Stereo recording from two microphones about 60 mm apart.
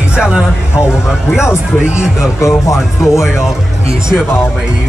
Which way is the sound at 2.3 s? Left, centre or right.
Left.